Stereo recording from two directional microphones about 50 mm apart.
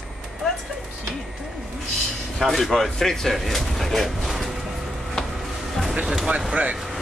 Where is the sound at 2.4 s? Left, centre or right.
Centre.